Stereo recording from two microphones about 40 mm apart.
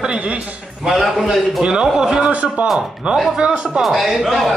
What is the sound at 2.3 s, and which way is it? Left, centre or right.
Speech, right.